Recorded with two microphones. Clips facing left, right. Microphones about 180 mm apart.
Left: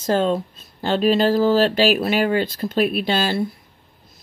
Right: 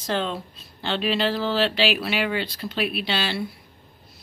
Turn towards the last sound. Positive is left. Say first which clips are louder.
# left 6 dB
turn(degrees=45)  # may be behind; listen again after turning